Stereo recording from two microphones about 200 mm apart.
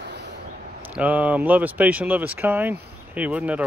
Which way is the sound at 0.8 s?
5° right (ahead or behind).